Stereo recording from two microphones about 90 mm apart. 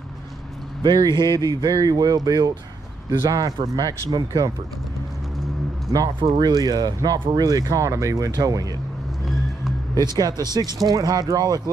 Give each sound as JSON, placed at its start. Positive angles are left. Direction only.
{"t": 0.8, "sound": "speech", "side_deg": -45}
{"t": 6.1, "sound": "speech", "side_deg": -65}
{"t": 6.5, "sound": "speech", "side_deg": -45}
{"t": 9.9, "sound": "speech", "side_deg": -45}